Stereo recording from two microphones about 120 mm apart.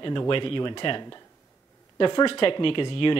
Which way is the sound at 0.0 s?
40° left (ahead or behind).